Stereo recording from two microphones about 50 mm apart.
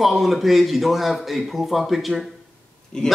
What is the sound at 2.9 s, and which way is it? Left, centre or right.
Speech, centre.